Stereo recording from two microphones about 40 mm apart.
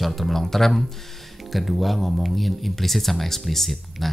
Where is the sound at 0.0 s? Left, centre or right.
Centre.